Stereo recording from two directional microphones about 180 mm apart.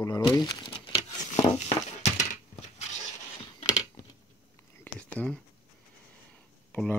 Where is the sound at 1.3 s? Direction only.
35° left (ahead or behind).